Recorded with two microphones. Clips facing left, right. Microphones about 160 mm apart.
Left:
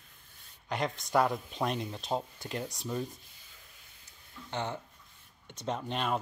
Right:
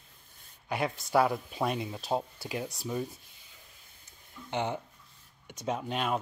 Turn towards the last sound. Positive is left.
turn(degrees=-5)  # may be behind; listen again after turning